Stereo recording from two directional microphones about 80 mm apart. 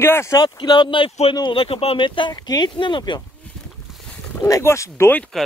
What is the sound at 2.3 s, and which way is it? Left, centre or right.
Speech, left.